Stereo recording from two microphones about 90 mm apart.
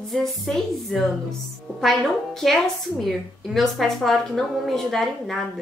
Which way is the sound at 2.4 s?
Centre (ahead or behind).